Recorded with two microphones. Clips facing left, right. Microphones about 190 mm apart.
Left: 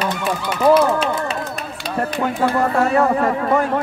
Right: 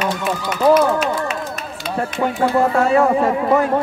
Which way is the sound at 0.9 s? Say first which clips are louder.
Right 1 dB; 35° left (ahead or behind).